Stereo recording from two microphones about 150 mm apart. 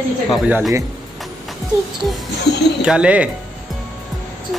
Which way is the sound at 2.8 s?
5° right (ahead or behind).